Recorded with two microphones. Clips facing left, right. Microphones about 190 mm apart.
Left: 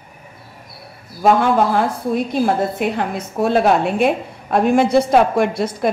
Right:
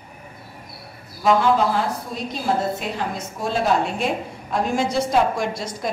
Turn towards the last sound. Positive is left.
turn(degrees=60)  # may be behind; listen again after turning